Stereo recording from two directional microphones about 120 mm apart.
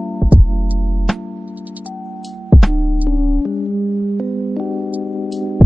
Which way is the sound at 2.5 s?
Centre (ahead or behind).